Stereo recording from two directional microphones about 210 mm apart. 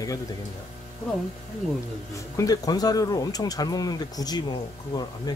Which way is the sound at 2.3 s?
15° left (ahead or behind).